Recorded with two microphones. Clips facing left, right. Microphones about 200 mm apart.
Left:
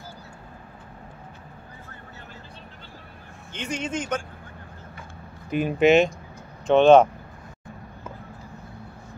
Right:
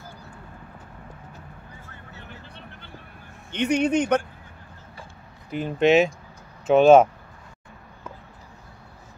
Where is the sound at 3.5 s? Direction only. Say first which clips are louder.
Right 9 dB; 65° right (ahead or behind).